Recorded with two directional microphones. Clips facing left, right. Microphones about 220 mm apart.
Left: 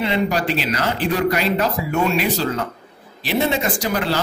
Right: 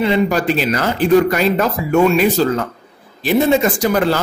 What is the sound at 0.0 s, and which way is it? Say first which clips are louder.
Speech: right 5 dB; 45° right (ahead or behind).